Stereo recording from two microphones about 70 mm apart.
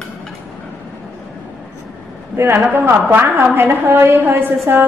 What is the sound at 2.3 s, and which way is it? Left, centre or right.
A woman's voice, right.